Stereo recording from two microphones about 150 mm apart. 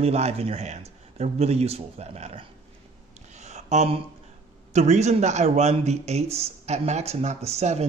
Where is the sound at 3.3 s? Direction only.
50° right (ahead or behind).